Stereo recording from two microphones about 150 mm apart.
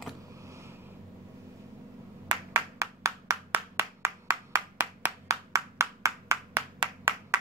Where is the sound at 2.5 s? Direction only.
20° right (ahead or behind).